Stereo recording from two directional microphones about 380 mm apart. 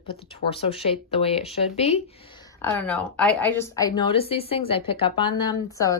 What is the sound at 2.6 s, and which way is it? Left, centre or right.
Speech, centre.